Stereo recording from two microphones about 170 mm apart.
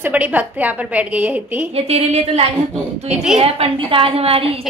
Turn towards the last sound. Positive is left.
turn(degrees=-35)  # may be behind; listen again after turning